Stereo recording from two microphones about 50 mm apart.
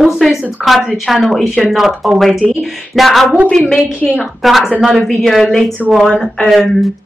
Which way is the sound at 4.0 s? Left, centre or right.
Left.